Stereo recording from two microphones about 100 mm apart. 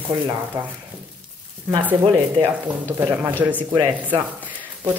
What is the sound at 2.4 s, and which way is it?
Speech, 25° right (ahead or behind).